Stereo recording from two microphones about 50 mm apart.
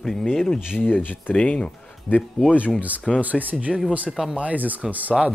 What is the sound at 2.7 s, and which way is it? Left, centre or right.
Speech, right.